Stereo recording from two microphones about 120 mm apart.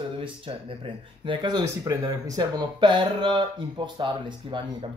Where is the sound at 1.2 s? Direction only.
35° right (ahead or behind).